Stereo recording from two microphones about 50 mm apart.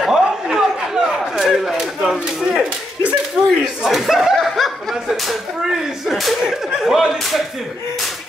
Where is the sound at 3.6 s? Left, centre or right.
Centre.